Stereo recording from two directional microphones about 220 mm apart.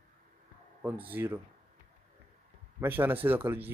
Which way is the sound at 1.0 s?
10° right (ahead or behind).